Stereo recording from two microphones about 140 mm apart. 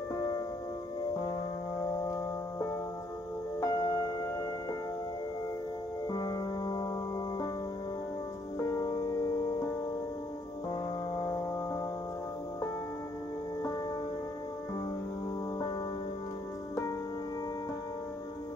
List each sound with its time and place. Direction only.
0.1 s music: 25° left (ahead or behind)
3.6 s music: 25° left (ahead or behind)
6.0 s music: 30° left (ahead or behind)
8.5 s music: 25° left (ahead or behind)